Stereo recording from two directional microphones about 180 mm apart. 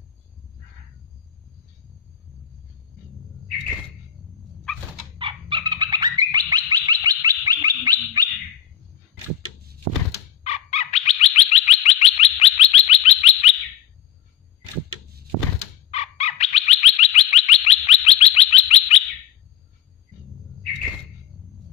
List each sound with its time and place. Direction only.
5.2 s bird: 25° right (ahead or behind)
10.4 s bird: 35° left (ahead or behind)
15.9 s bird: 35° left (ahead or behind)